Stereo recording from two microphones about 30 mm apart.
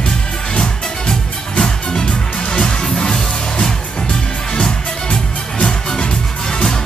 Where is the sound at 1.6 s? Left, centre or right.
Left.